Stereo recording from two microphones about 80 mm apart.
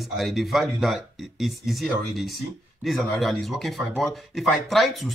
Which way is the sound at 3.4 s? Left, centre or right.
Centre.